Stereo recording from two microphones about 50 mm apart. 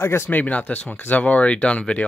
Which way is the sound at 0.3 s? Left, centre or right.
Left.